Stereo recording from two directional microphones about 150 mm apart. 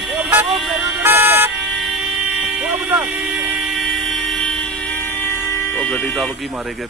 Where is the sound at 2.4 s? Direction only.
5° right (ahead or behind).